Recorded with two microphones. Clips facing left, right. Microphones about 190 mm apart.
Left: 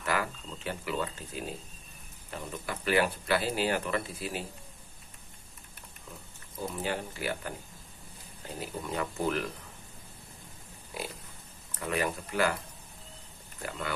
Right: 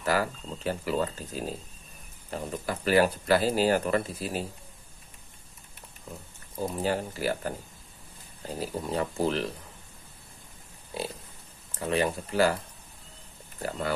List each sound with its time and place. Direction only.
0.0 s speech: 35° right (ahead or behind)
6.7 s speech: 40° right (ahead or behind)
8.5 s speech: 35° right (ahead or behind)
10.9 s pig: 30° right (ahead or behind)
11.8 s speech: 30° right (ahead or behind)
13.6 s speech: 35° right (ahead or behind)